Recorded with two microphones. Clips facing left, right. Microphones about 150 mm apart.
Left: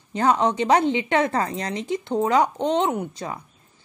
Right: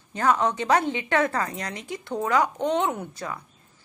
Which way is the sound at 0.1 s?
25° left (ahead or behind).